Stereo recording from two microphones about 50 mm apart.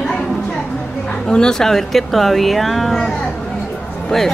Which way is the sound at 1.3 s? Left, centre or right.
Centre.